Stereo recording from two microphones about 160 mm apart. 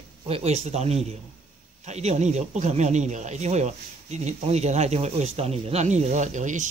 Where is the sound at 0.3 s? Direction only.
40° right (ahead or behind).